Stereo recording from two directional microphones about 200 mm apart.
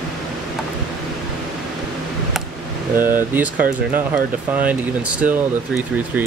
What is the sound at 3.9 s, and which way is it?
Speech, 10° right (ahead or behind).